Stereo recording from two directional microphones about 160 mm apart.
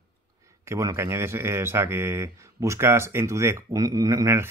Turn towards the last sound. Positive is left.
turn(degrees=-20)  # may be behind; listen again after turning